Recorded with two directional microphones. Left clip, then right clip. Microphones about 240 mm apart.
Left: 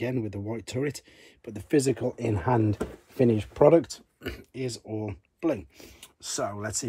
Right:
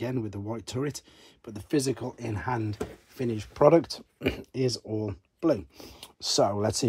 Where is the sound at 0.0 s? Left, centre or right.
Centre.